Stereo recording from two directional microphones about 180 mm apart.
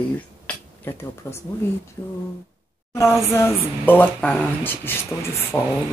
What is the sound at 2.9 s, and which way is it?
Speech, 15° left (ahead or behind).